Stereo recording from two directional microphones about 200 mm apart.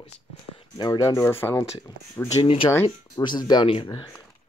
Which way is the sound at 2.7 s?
15° left (ahead or behind).